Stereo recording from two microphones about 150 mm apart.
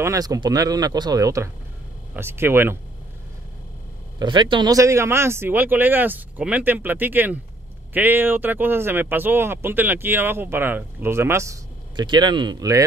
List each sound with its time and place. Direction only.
0.0 s speech: 20° right (ahead or behind)
4.2 s speech: 30° right (ahead or behind)
12.0 s speech: 30° right (ahead or behind)